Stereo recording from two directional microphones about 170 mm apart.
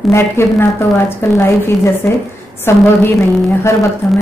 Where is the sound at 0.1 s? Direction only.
15° left (ahead or behind).